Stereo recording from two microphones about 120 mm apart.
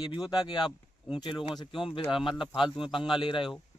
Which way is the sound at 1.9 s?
45° left (ahead or behind).